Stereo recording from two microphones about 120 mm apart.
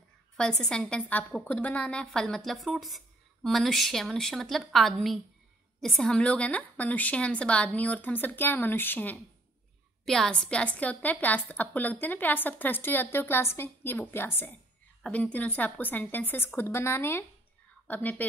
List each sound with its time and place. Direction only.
0.4 s a woman's voice: 5° left (ahead or behind)
10.0 s a woman's voice: 5° left (ahead or behind)